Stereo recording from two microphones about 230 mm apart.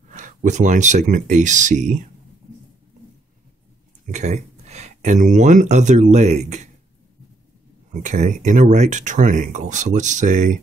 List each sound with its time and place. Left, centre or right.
0.1 s speech: right
4.0 s speech: right
8.0 s speech: right